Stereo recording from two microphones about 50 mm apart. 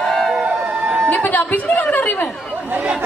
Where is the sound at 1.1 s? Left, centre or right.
Left.